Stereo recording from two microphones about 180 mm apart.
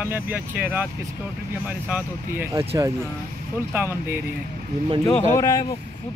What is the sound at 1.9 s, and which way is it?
Speech, 10° right (ahead or behind).